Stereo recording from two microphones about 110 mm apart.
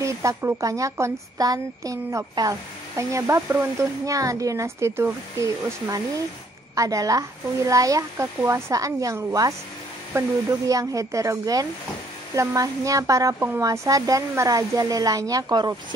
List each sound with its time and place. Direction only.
0.0 s speech: 30° right (ahead or behind)